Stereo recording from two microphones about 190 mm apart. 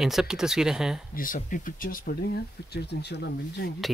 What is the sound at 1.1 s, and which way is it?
Speech, 45° left (ahead or behind).